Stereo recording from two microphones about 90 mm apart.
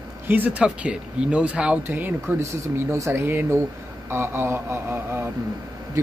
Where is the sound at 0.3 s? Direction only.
15° right (ahead or behind).